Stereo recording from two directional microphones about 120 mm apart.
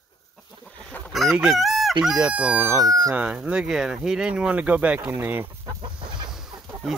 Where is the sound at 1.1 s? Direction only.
Centre (ahead or behind).